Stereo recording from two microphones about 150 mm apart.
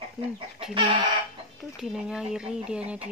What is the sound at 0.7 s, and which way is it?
Chicken, 35° right (ahead or behind).